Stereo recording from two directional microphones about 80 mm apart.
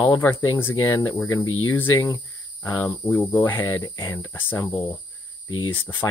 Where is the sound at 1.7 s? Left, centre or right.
Left.